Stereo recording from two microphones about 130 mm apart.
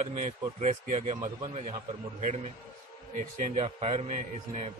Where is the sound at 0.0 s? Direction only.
65° right (ahead or behind).